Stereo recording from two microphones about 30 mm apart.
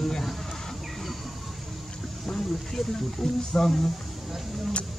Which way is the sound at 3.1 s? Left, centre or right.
Centre.